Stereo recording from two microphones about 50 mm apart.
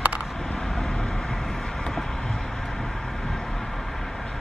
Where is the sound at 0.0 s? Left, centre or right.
Right.